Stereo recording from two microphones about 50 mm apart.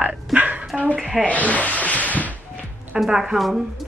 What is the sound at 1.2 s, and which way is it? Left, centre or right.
Speech, left.